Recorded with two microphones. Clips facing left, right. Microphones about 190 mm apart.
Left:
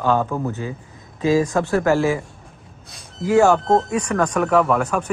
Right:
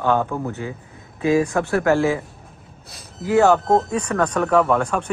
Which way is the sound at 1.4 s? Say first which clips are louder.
Left 1 dB; 20° left (ahead or behind).